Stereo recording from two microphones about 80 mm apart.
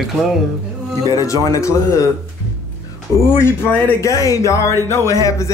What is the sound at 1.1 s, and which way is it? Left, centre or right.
Speech, left.